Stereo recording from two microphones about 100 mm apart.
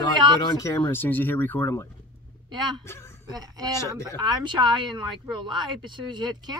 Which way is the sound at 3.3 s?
40° right (ahead or behind).